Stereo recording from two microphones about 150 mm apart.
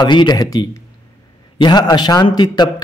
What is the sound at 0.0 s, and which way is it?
A man's voice, 30° left (ahead or behind).